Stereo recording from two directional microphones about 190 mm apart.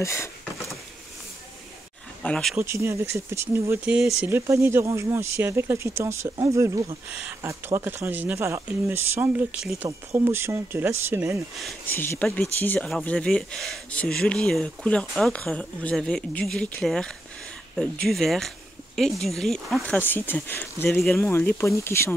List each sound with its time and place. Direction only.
0.0 s a sound: 15° left (ahead or behind)
2.2 s speech: 5° left (ahead or behind)
2.5 s speech: 15° right (ahead or behind)
11.5 s speech: 5° left (ahead or behind)